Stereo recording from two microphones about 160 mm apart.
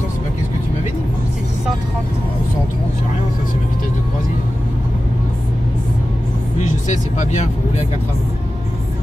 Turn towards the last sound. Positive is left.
turn(degrees=45)  # may be behind; listen again after turning